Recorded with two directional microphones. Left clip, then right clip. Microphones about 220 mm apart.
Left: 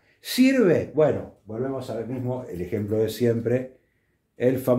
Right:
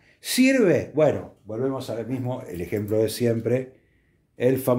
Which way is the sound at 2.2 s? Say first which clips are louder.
Left 1 dB; 35° right (ahead or behind).